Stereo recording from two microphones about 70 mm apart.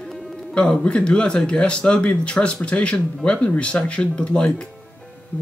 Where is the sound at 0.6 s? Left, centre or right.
Centre.